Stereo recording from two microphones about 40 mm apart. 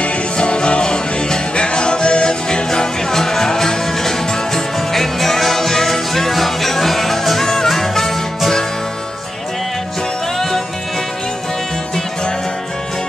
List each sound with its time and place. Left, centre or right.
0.0 s music: left; by 8.6 s centre